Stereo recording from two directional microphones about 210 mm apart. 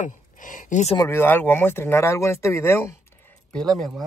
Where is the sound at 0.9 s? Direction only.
15° left (ahead or behind).